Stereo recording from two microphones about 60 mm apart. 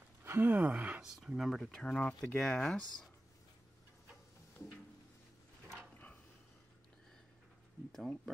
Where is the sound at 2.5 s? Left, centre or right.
Centre.